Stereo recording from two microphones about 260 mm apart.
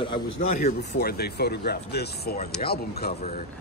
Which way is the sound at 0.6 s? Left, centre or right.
Left.